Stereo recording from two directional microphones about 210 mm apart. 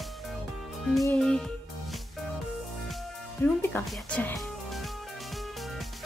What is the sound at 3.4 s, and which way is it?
Speech, 10° left (ahead or behind).